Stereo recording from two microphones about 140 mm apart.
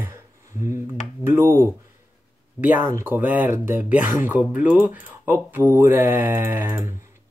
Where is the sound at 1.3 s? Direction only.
15° right (ahead or behind).